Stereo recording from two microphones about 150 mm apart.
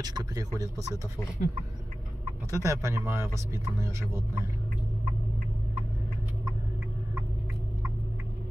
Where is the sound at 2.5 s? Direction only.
20° right (ahead or behind).